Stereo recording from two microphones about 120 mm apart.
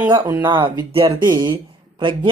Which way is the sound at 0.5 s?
40° right (ahead or behind).